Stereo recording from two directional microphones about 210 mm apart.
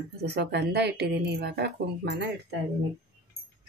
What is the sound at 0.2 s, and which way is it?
A woman's voice, 50° right (ahead or behind).